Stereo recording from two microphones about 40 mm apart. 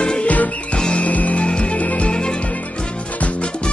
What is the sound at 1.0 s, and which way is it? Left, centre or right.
Music, left.